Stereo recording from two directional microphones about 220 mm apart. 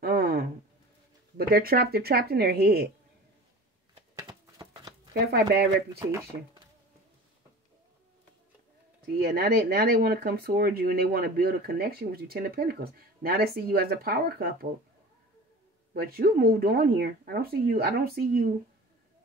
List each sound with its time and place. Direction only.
0.0 s a sound: 45° right (ahead or behind)
1.5 s speech: 45° right (ahead or behind)
3.9 s a sound: 20° right (ahead or behind)
5.2 s speech: 45° right (ahead or behind)
9.1 s speech: 45° right (ahead or behind)
15.9 s speech: 45° right (ahead or behind)